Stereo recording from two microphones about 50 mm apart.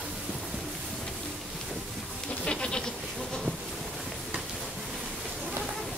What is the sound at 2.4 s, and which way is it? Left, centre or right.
Goat, centre.